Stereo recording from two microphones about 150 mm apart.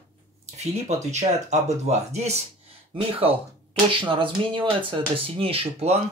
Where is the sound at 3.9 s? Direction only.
35° right (ahead or behind).